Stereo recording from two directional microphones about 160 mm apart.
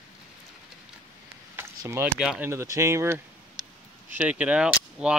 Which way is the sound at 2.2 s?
10° right (ahead or behind).